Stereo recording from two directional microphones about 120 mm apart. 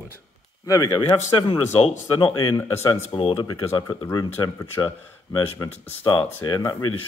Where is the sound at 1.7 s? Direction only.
50° left (ahead or behind).